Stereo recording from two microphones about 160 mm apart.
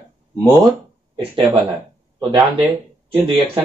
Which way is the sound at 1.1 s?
30° right (ahead or behind).